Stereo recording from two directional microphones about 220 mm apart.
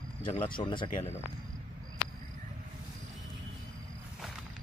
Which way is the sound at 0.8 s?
35° left (ahead or behind).